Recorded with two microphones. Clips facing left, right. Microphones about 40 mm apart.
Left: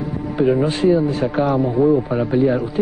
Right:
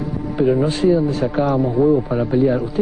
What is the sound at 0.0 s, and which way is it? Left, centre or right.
Speech, centre.